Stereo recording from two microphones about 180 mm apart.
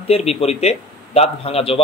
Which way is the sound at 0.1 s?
35° left (ahead or behind).